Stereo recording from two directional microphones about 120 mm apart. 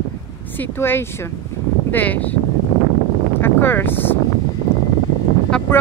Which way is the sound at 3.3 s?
20° left (ahead or behind).